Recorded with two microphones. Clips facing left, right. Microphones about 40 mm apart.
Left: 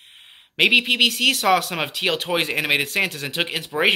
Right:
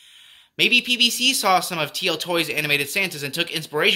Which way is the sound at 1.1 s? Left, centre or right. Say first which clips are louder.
Left 1 dB; left.